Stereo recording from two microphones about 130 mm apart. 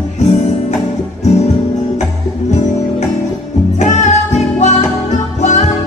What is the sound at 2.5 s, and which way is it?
Music, 60° left (ahead or behind).